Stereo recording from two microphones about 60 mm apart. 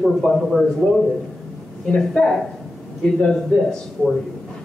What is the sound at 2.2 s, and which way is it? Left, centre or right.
Speech, left.